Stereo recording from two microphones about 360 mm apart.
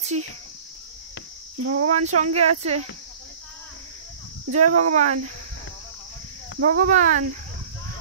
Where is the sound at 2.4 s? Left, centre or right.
Centre.